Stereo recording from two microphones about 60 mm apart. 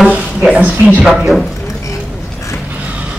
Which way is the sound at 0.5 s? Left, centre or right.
Centre.